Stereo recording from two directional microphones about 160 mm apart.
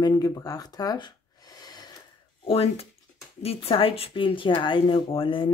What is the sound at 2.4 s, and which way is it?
Speech, 40° left (ahead or behind).